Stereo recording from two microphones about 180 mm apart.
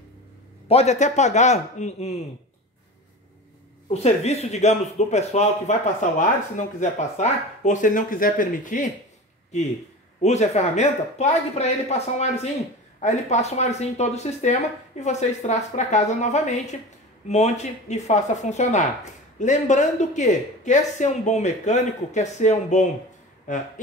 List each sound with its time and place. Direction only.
0.7 s speech: 35° left (ahead or behind)
3.9 s speech: 35° left (ahead or behind)
10.2 s speech: 40° left (ahead or behind)